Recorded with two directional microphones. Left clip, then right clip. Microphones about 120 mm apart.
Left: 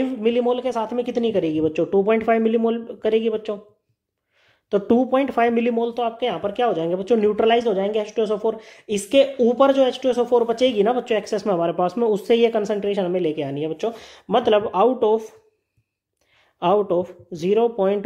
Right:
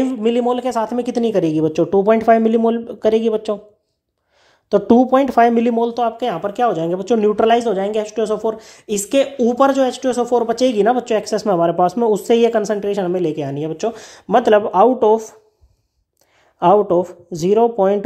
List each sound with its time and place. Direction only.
0.0 s speech: 30° right (ahead or behind)
4.6 s speech: 30° right (ahead or behind)
16.5 s speech: 25° right (ahead or behind)